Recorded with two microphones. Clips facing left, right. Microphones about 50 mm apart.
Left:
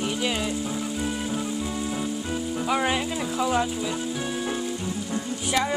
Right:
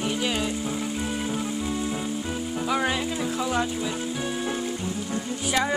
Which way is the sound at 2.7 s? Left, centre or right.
Centre.